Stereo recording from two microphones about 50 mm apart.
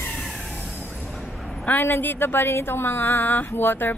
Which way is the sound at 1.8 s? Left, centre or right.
Left.